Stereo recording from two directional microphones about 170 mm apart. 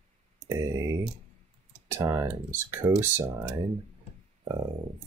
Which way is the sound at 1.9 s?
15° right (ahead or behind).